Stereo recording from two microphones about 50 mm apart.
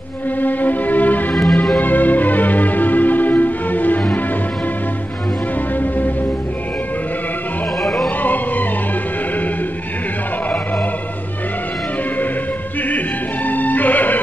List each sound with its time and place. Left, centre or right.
0.4 s music: left
1.3 s music: centre
1.8 s music: left
5.8 s music: left
7.8 s music: centre
8.2 s music: left
12.8 s music: left